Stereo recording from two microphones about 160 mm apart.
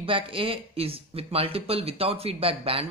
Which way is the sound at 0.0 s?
35° right (ahead or behind).